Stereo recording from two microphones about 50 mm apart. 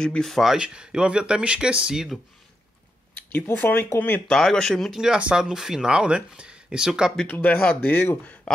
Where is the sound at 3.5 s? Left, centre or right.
Left.